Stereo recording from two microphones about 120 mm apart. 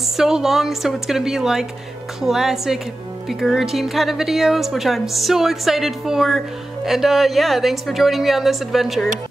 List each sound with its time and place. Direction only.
0.2 s speech: 5° right (ahead or behind)